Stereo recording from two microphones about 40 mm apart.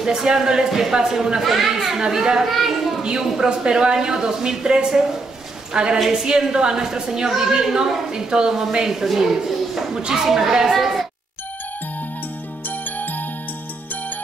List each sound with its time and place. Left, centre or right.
0.0 s a woman's voice: centre
2.5 s children playing: centre
3.3 s a woman's voice: centre
5.9 s speech: centre
6.2 s a woman's voice: centre
12.6 s music: left